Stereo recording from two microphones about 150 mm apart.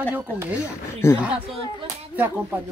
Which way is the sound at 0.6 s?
15° left (ahead or behind).